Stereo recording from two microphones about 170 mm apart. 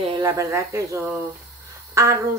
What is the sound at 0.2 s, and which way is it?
Speech, 20° right (ahead or behind).